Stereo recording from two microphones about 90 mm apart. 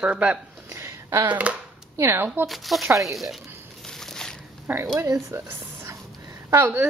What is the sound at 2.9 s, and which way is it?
Speech, 35° right (ahead or behind).